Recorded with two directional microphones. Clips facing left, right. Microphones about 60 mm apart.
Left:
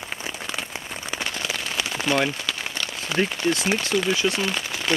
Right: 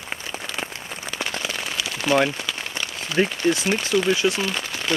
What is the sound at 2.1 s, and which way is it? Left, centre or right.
Speech, centre.